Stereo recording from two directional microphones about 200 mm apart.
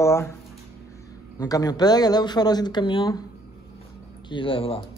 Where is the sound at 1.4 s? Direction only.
20° left (ahead or behind).